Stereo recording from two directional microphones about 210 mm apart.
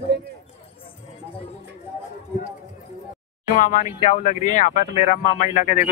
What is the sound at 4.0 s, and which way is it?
Speech, 35° left (ahead or behind).